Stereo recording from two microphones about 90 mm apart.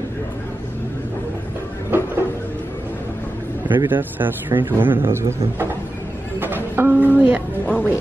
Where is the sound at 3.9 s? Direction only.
20° right (ahead or behind).